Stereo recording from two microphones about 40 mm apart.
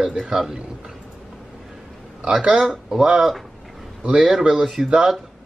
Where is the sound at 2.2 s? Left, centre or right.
Right.